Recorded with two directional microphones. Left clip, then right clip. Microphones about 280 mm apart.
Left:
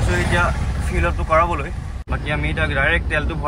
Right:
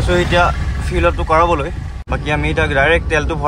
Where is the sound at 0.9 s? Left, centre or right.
Centre.